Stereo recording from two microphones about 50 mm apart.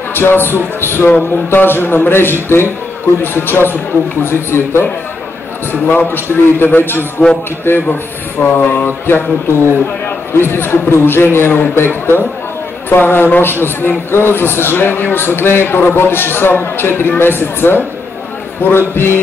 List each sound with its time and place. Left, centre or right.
0.1 s a man's voice: left
8.5 s a sound: left
8.8 s a man's voice: left